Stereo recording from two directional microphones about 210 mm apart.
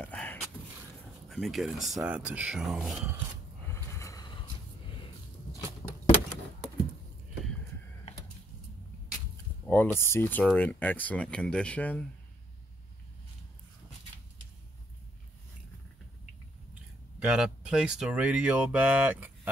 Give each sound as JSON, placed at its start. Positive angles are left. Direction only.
{"t": 0.0, "sound": "a sound", "side_deg": 5}
{"t": 1.3, "sound": "speech", "side_deg": 0}
{"t": 3.6, "sound": "snort", "side_deg": 15}
{"t": 4.9, "sound": "a sound", "side_deg": 25}
{"t": 9.7, "sound": "speech", "side_deg": 10}
{"t": 17.2, "sound": "speech", "side_deg": -5}